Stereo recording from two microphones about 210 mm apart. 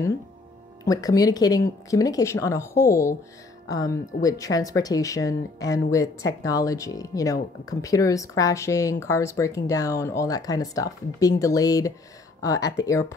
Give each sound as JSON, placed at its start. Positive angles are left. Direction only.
{"t": 0.8, "sound": "speech", "side_deg": 15}